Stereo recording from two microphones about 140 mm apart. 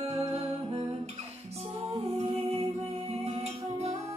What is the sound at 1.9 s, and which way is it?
Music, 40° right (ahead or behind).